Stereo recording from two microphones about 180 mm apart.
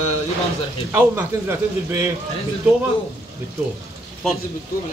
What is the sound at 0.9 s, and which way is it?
A man's voice, 15° right (ahead or behind).